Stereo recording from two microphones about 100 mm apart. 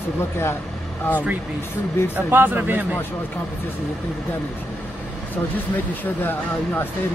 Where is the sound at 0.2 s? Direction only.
25° left (ahead or behind).